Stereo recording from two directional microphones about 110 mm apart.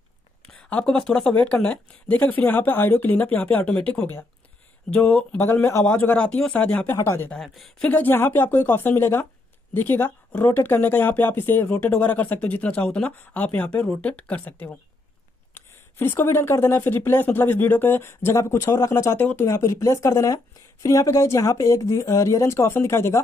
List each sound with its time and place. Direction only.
0.5 s speech: 10° left (ahead or behind)
7.2 s speech: centre (ahead or behind)
7.9 s speech: 20° left (ahead or behind)